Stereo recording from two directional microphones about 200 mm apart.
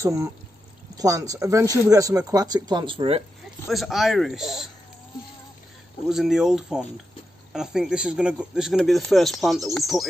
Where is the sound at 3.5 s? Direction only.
Centre (ahead or behind).